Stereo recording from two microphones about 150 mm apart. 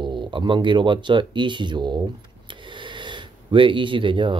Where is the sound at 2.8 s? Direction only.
30° right (ahead or behind).